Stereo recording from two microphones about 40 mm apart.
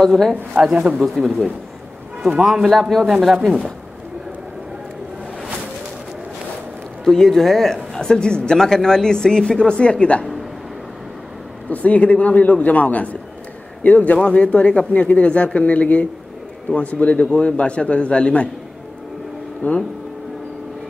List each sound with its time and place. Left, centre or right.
0.0 s speech: centre
7.1 s speech: centre; by 10.2 s left
11.7 s a man's voice: left
14.9 s a man's voice: left
19.6 s a man's voice: left